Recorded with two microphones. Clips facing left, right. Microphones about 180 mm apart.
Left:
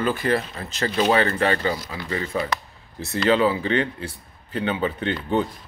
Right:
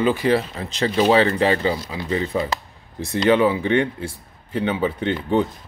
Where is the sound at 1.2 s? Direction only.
20° right (ahead or behind).